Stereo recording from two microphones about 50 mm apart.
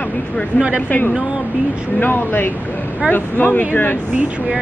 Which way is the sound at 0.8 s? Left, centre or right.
Left.